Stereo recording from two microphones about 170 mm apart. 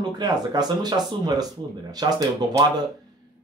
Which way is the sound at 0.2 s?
25° right (ahead or behind).